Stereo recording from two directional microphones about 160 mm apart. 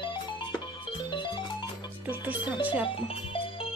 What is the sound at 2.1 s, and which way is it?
Music, 10° right (ahead or behind).